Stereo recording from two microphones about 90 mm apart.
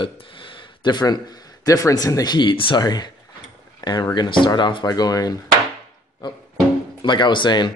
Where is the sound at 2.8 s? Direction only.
50° left (ahead or behind).